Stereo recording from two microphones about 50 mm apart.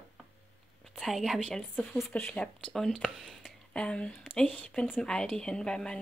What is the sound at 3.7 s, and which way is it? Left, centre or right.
Speech, left.